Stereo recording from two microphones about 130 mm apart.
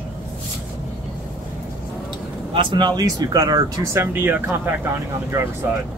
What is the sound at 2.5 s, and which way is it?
Speech, 40° right (ahead or behind).